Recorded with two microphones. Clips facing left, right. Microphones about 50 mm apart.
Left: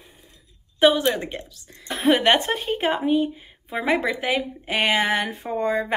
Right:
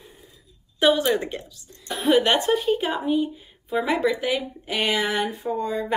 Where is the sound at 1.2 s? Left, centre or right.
Left.